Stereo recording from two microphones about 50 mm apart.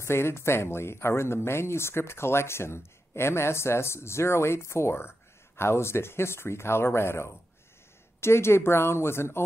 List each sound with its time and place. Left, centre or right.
0.0 s speech: left